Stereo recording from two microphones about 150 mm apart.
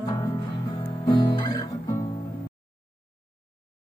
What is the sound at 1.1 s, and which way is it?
Guitar, 30° left (ahead or behind).